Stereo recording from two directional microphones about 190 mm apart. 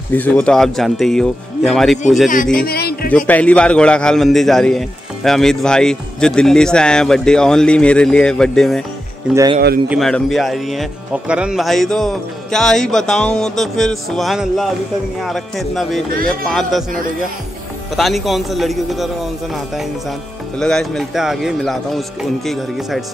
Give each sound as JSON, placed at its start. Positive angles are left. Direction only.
{"t": 0.1, "sound": "a man's voice", "side_deg": 10}
{"t": 2.5, "sound": "a man's voice", "side_deg": 55}
{"t": 3.3, "sound": "a man's voice", "side_deg": 5}
{"t": 9.8, "sound": "a man's voice", "side_deg": 0}
{"t": 17.9, "sound": "a man's voice", "side_deg": 0}
{"t": 20.5, "sound": "a man's voice", "side_deg": 5}